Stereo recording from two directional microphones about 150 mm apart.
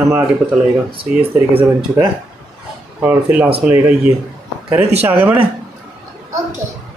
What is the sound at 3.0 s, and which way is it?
Speech, 10° right (ahead or behind).